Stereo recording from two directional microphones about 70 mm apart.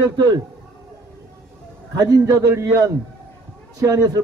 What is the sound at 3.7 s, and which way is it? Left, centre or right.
Speech, right.